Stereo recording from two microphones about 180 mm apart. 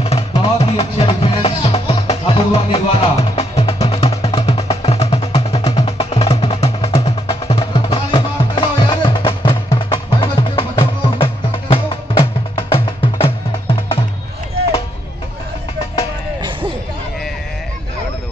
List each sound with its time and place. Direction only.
0.0 s music: 35° left (ahead or behind)